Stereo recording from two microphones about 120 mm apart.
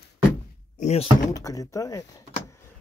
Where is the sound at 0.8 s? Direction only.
60° left (ahead or behind).